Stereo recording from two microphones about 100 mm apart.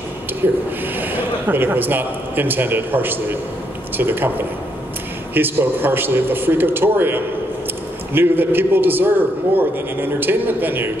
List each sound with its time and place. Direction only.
0.4 s a man's voice: 20° right (ahead or behind)
5.3 s speech: 20° right (ahead or behind)
10.2 s speech: 20° right (ahead or behind)